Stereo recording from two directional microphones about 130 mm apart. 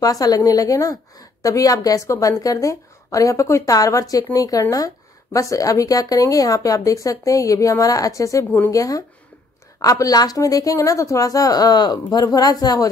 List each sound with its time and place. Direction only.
0.0 s a woman's voice: 30° left (ahead or behind)